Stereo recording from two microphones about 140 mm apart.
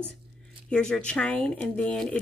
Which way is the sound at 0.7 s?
5° left (ahead or behind).